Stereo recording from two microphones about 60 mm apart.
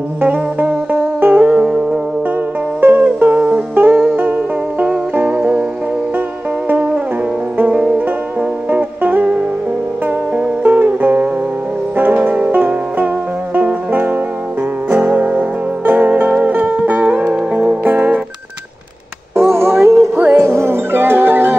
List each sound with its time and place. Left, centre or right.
0.2 s music: right
2.8 s music: right
7.5 s music: right
19.3 s music: right